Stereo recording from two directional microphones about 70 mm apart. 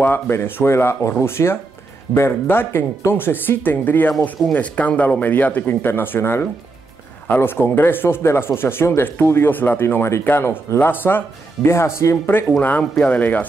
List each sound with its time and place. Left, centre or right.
0.0 s speech: left
12.3 s speech: left